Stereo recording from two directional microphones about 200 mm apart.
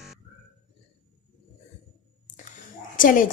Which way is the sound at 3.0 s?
45° left (ahead or behind).